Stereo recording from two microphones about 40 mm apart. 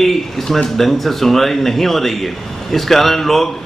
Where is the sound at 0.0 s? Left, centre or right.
Centre.